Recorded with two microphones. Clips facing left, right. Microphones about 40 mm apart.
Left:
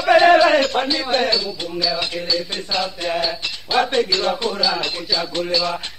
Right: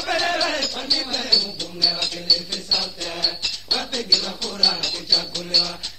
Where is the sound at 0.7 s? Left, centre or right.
Left.